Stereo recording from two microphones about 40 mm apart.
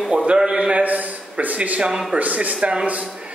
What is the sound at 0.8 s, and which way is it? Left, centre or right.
A man's voice, right.